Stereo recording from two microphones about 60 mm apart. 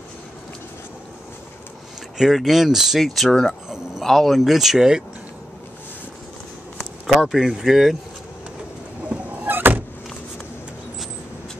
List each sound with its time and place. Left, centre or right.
2.1 s speech: centre
3.6 s a sound: centre
4.0 s speech: centre
6.8 s speech: centre
9.1 s vehicle: right